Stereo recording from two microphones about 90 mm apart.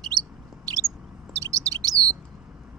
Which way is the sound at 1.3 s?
35° right (ahead or behind).